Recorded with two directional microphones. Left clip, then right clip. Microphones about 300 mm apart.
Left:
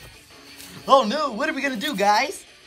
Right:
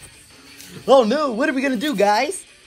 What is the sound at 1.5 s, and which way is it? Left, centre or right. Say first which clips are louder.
Speech: right 4 dB; centre.